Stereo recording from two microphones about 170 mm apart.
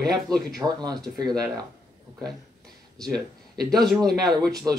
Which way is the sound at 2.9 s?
5° left (ahead or behind).